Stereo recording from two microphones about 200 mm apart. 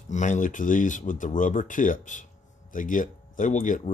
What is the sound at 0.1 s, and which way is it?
Speech, 40° left (ahead or behind).